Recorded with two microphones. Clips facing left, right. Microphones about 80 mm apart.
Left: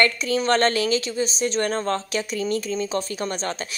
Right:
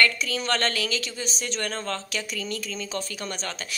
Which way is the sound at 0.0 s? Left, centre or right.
Left.